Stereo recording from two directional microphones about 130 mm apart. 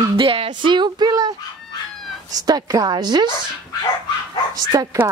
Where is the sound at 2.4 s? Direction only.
30° right (ahead or behind).